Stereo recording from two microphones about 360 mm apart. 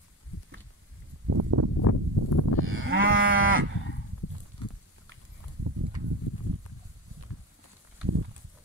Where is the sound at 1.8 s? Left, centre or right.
Left.